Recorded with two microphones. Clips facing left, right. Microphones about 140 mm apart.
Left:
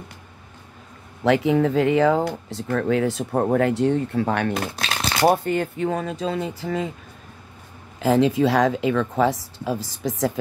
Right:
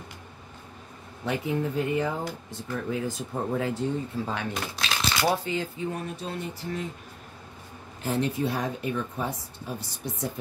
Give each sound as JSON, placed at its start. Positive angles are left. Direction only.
{"t": 1.2, "sound": "speech", "side_deg": 90}
{"t": 8.0, "sound": "speech", "side_deg": 90}